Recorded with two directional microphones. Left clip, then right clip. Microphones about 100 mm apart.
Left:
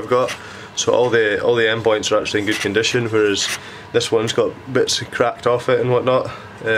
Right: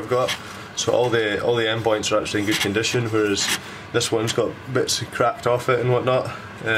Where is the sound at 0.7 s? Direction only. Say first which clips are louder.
Left 4 dB; 30° left (ahead or behind).